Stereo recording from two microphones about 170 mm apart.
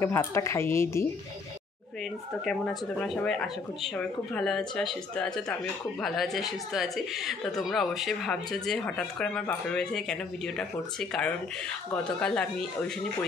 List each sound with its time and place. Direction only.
0.0 s speech: 15° left (ahead or behind)
2.4 s speech: 5° left (ahead or behind)